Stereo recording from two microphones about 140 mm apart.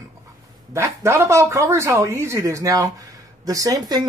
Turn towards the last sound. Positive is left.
turn(degrees=-25)  # may be behind; listen again after turning